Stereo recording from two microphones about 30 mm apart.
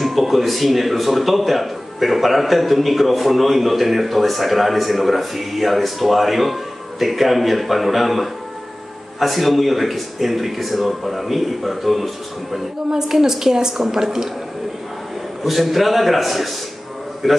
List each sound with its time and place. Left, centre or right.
0.0 s a man's voice: centre
12.9 s a woman's voice: centre
15.4 s a man's voice: centre